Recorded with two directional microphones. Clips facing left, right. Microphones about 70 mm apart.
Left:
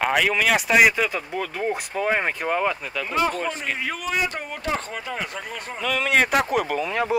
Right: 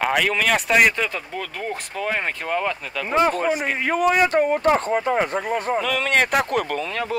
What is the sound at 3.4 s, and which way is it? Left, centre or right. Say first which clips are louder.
Speech: right 5 dB; centre.